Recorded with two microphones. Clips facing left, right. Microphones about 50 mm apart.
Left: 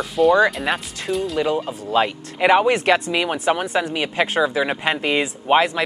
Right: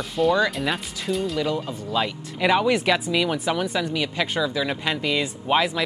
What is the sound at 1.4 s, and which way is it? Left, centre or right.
Speech, left.